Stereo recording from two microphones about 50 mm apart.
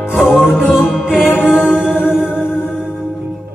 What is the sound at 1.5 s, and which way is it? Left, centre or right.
Music, centre.